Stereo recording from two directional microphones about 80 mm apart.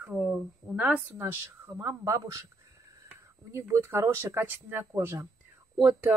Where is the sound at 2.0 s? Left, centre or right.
Right.